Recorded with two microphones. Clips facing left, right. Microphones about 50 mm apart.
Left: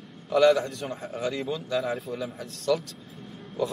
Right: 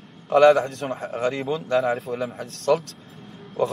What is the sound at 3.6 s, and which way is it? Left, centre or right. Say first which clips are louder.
Speech: right 5 dB; right.